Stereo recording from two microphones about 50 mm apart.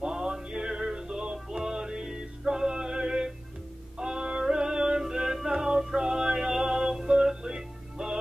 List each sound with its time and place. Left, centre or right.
0.0 s music: centre